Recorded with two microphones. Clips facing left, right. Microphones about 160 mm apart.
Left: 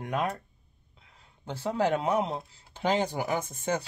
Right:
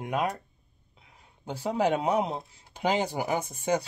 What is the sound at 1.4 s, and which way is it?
Speech, 15° right (ahead or behind).